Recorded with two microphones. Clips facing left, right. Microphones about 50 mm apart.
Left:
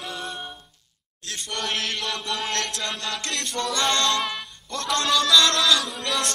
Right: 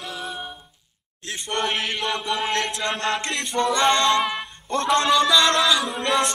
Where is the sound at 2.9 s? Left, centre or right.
Right; by 4.3 s centre.